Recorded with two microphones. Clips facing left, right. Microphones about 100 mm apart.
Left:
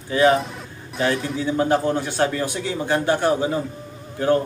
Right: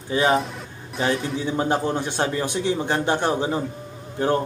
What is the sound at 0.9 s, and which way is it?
Speech, centre (ahead or behind).